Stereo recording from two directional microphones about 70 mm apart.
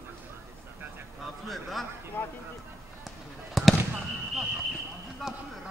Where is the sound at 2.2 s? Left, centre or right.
Left.